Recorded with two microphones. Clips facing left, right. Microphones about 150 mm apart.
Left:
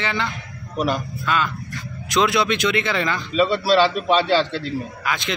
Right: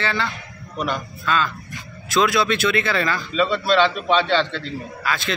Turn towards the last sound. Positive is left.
turn(degrees=20)  # may be behind; listen again after turning